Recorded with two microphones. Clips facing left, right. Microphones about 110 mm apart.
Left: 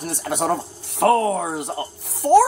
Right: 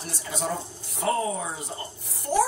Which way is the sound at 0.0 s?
55° left (ahead or behind).